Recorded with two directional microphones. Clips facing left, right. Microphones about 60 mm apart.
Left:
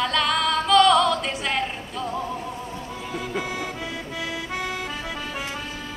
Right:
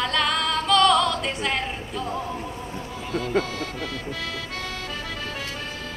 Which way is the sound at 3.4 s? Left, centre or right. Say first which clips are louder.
Left 1 dB; centre.